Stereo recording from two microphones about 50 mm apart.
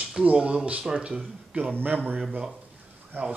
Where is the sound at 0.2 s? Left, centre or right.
Right.